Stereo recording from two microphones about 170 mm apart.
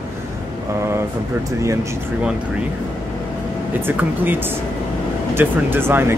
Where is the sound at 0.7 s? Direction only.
15° right (ahead or behind).